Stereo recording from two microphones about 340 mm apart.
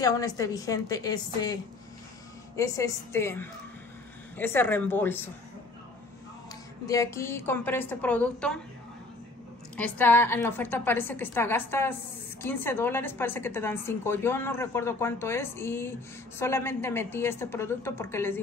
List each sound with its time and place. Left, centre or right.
0.0 s a woman's voice: centre
6.9 s a woman's voice: centre
9.8 s a woman's voice: centre